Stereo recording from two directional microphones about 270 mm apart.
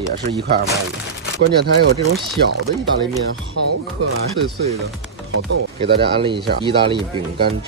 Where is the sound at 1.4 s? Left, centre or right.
Right.